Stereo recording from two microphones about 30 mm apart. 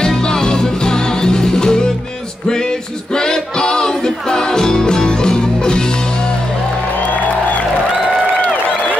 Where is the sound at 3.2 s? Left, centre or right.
Left.